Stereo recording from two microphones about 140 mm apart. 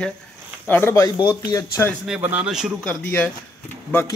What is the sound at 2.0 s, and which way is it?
Speech, 10° right (ahead or behind).